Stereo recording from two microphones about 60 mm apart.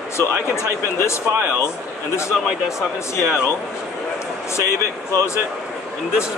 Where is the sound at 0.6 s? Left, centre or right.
Left.